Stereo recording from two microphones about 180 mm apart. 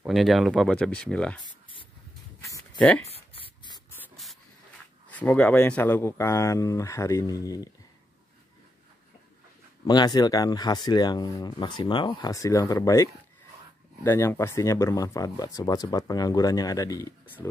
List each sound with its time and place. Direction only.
0.0 s speech: centre (ahead or behind)
3.1 s a sound: 30° left (ahead or behind)
4.0 s hiss: centre (ahead or behind)
5.1 s speech: 10° left (ahead or behind)
9.8 s speech: 20° left (ahead or behind)